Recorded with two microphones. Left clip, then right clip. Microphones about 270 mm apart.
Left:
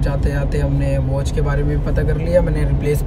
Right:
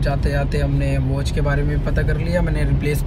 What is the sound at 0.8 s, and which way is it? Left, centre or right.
Speech, centre.